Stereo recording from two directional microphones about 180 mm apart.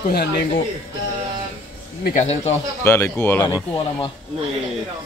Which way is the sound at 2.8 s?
15° left (ahead or behind).